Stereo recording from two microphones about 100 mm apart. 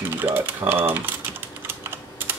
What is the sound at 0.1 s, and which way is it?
Speech, 20° right (ahead or behind).